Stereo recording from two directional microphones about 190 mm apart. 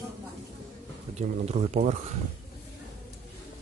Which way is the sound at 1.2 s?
35° right (ahead or behind).